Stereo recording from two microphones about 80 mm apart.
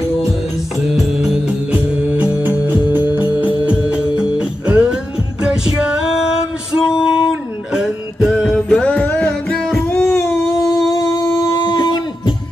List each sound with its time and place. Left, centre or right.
1.7 s music: right; by 8.5 s centre
8.5 s music: centre
10.0 s a sound: left
10.9 s guitar: left